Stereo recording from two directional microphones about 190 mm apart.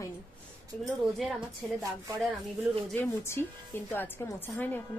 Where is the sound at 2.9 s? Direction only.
10° left (ahead or behind).